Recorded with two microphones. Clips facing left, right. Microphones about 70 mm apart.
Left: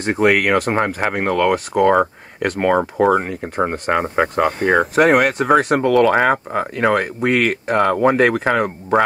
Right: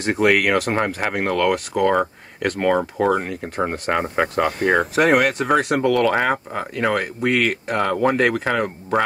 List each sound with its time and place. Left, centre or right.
0.0 s speech: centre
0.7 s speech: centre
2.6 s speech: left
3.4 s speech: centre
5.8 s speech: centre
7.9 s speech: left
8.2 s speech: centre